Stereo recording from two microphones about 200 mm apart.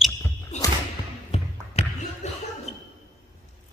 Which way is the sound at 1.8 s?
30° left (ahead or behind).